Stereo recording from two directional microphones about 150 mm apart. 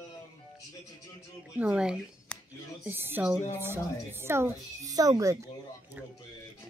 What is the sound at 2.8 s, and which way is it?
A woman's voice, 15° right (ahead or behind).